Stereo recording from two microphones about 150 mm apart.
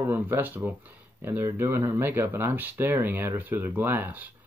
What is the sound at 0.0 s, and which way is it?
Speech, 15° right (ahead or behind).